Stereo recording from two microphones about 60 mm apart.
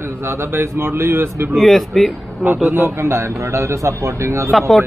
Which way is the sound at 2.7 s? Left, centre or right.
Right.